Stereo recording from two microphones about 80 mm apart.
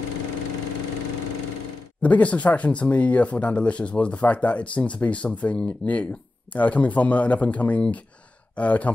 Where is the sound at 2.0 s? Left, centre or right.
Centre.